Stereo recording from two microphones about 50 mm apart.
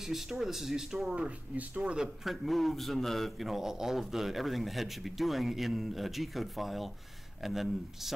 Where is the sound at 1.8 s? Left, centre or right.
Centre.